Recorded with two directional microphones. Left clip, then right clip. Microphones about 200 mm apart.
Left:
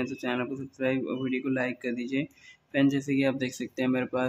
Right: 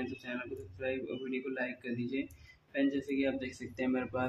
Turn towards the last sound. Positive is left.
turn(degrees=25)  # may be behind; listen again after turning